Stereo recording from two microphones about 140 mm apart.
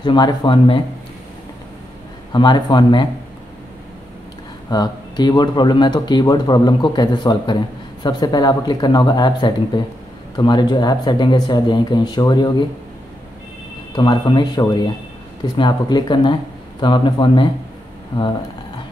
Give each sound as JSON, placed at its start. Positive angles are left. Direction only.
{"t": 0.0, "sound": "speech", "side_deg": 30}
{"t": 2.3, "sound": "speech", "side_deg": 30}
{"t": 4.6, "sound": "speech", "side_deg": 30}
{"t": 13.9, "sound": "speech", "side_deg": 35}